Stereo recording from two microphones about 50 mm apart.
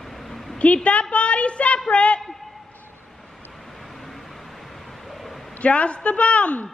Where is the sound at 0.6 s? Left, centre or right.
Left.